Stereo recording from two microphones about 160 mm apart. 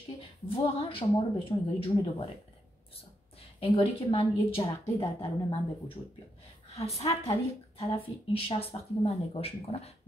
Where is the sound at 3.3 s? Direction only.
35° left (ahead or behind).